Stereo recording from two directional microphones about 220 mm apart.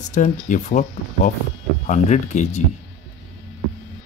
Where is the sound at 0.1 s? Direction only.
35° left (ahead or behind).